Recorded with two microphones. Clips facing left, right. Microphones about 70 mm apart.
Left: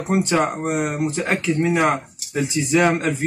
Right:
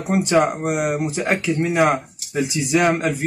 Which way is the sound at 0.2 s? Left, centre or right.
Centre.